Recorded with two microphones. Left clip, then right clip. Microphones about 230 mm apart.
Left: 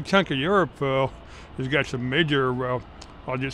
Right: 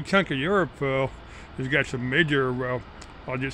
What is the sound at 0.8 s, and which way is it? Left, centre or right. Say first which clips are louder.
Speech: left 2 dB; centre.